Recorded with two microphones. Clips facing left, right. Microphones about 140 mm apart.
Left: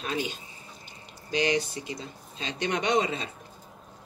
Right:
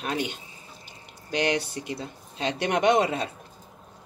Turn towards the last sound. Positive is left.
turn(degrees=-60)  # may be behind; listen again after turning